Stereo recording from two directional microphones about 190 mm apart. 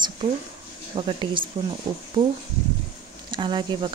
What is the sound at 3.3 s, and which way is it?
Speech, 25° right (ahead or behind).